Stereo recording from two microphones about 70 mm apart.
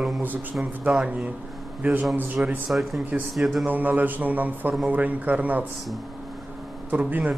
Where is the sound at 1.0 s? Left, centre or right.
Centre.